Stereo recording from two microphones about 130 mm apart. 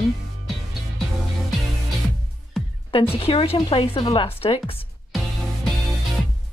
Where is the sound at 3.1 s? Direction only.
45° left (ahead or behind).